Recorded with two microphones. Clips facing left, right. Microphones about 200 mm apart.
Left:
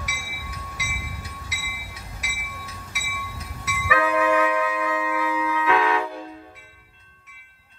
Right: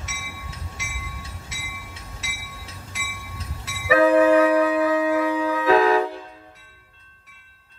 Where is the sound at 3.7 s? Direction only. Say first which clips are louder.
Right 7 dB; 30° right (ahead or behind).